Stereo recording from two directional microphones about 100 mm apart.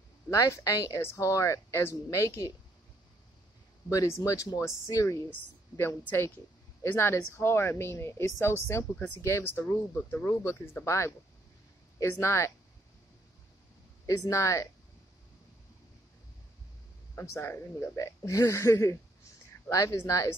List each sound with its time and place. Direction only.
0.3 s speech: 30° left (ahead or behind)
3.9 s a woman's voice: 30° left (ahead or behind)
14.0 s speech: 30° left (ahead or behind)
17.1 s a woman's voice: 25° left (ahead or behind)